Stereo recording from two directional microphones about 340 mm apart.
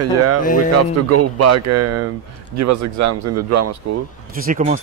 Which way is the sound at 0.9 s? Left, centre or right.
Right.